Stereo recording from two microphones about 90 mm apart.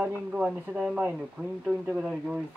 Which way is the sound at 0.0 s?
15° right (ahead or behind).